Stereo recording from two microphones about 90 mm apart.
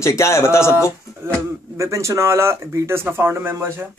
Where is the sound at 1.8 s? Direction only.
35° right (ahead or behind).